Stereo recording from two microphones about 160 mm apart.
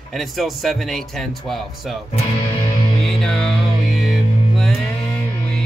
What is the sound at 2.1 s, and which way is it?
Music, 30° left (ahead or behind).